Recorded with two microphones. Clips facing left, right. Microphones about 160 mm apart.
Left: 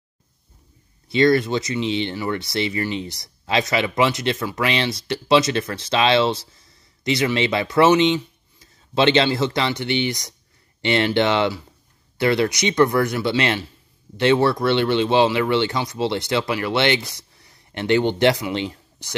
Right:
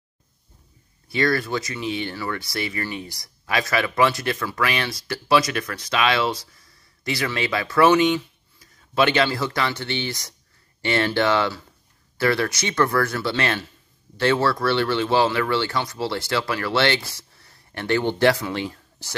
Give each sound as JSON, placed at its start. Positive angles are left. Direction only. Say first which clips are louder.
{"t": 1.0, "sound": "speech", "louder": "left 6 dB", "side_deg": 20}